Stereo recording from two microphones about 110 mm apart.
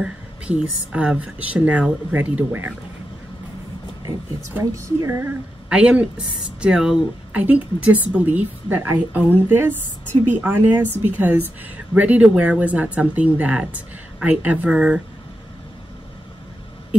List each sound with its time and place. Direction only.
0.0 s speech: 10° right (ahead or behind)
4.7 s speech: 25° right (ahead or behind)
5.7 s speech: 10° right (ahead or behind)